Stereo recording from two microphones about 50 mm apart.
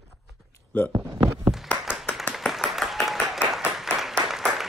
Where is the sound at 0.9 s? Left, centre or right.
Right.